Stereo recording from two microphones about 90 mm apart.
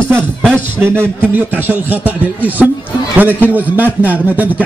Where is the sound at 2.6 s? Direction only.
Centre (ahead or behind).